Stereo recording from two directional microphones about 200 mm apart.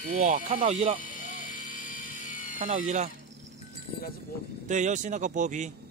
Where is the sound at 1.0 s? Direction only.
40° left (ahead or behind).